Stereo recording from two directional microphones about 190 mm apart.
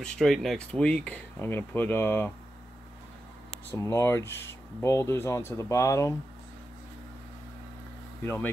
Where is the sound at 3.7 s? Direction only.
15° left (ahead or behind).